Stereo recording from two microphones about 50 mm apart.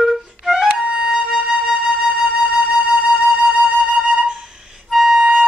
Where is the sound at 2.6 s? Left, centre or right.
Centre.